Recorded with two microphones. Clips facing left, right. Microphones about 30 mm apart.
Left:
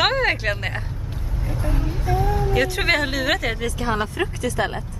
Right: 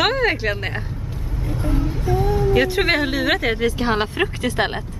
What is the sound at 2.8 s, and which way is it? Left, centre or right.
Speech, centre.